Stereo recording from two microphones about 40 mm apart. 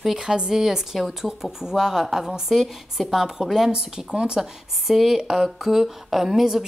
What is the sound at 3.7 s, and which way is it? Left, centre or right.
Speech, right.